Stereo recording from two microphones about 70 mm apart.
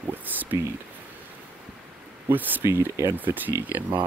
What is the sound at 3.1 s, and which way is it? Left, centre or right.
Speech, right.